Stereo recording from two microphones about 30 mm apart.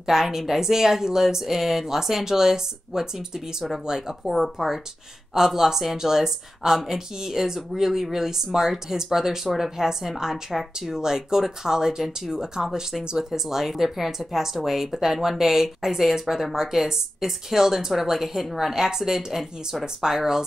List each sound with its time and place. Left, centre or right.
0.0 s a woman's voice: centre
4.3 s a woman's voice: centre